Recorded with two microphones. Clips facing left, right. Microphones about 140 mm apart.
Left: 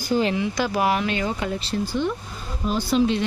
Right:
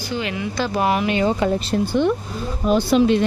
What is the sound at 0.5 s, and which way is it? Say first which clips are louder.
Speech: right 2 dB; 10° left (ahead or behind).